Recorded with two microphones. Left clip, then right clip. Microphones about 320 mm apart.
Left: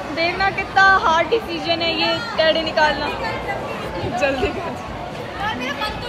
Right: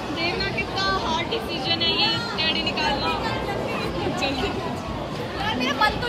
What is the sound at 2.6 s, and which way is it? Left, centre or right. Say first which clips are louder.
Speech: left 6 dB; centre.